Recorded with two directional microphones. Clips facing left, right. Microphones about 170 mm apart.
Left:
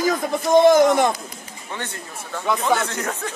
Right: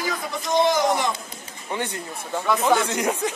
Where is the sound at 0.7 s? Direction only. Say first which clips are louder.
Left 7 dB; 50° left (ahead or behind).